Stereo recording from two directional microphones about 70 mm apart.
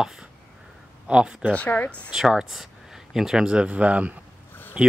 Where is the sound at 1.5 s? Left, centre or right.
Left.